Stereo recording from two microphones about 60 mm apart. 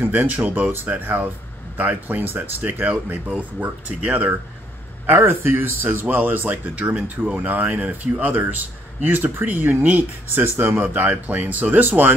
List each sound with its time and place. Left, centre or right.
0.0 s a man's voice: right